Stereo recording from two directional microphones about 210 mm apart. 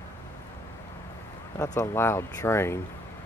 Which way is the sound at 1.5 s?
15° left (ahead or behind).